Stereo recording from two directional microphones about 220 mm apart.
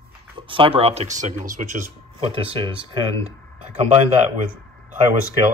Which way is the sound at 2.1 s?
25° right (ahead or behind).